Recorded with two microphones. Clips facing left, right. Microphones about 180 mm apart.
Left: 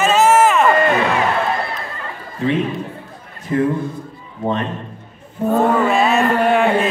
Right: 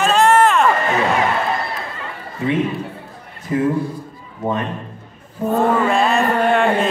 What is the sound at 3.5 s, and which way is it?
Speech, 20° right (ahead or behind).